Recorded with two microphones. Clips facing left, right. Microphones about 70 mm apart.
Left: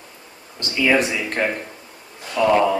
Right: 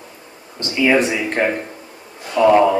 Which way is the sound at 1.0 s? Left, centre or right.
Right.